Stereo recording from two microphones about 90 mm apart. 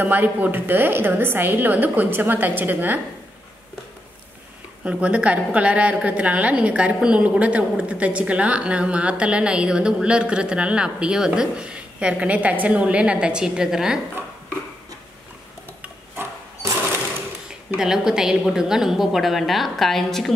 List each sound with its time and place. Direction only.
0.0 s a woman's voice: 20° right (ahead or behind)
4.8 s a woman's voice: 15° right (ahead or behind)
17.7 s a woman's voice: 5° right (ahead or behind)